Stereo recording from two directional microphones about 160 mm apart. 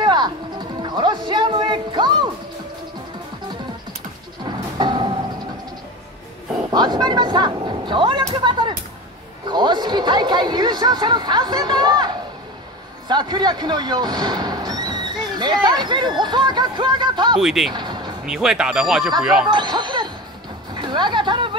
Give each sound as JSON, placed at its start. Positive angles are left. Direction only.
{"t": 0.0, "sound": "music", "side_deg": -25}
{"t": 4.5, "sound": "music", "side_deg": -30}
{"t": 6.7, "sound": "vehicle", "side_deg": -25}
{"t": 9.5, "sound": "a sound", "side_deg": -25}
{"t": 13.1, "sound": "speech", "side_deg": -25}
{"t": 17.4, "sound": "speech", "side_deg": 0}
{"t": 17.7, "sound": "music", "side_deg": -30}
{"t": 18.2, "sound": "speech", "side_deg": -5}
{"t": 19.4, "sound": "speech", "side_deg": -30}
{"t": 20.7, "sound": "music", "side_deg": -30}